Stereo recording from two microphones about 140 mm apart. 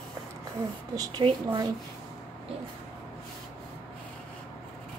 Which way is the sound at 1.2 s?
30° right (ahead or behind).